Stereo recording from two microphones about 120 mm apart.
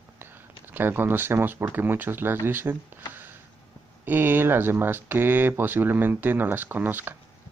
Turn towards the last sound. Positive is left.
turn(degrees=-15)  # may be behind; listen again after turning